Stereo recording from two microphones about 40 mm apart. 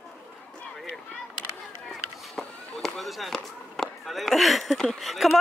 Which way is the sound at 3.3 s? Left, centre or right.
Centre.